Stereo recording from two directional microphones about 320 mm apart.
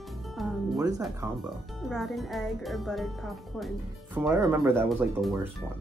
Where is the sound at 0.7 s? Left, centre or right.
Centre.